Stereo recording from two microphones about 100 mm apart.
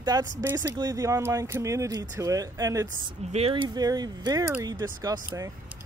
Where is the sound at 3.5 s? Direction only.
50° right (ahead or behind).